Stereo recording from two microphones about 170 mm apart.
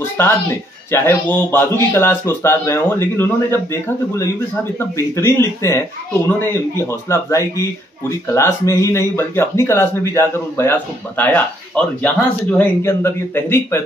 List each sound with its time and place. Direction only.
0.2 s speech: 15° left (ahead or behind)